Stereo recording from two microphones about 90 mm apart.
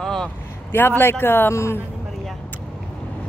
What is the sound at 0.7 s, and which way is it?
A woman's voice, 25° left (ahead or behind).